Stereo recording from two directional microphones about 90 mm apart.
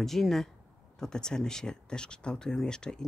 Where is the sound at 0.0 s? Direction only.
5° left (ahead or behind).